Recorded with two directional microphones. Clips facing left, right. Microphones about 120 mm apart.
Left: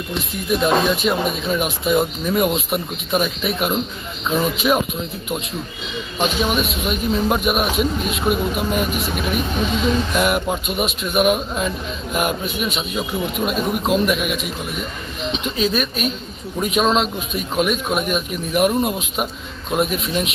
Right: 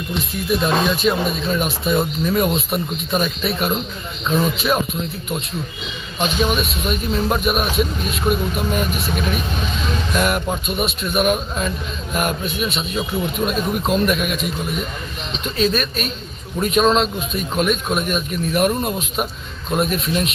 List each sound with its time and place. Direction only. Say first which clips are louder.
0.5 s speech: left 1 dB; 15° left (ahead or behind)
6.1 s speech: even; 10° left (ahead or behind)
10.1 s speech: left 1 dB; 15° left (ahead or behind)